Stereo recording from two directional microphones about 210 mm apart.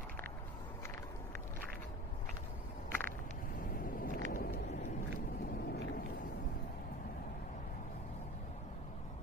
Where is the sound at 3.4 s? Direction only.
40° left (ahead or behind).